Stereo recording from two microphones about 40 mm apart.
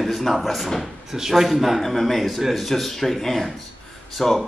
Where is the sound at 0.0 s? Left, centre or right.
Centre.